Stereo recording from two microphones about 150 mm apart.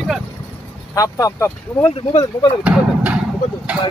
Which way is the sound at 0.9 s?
25° left (ahead or behind).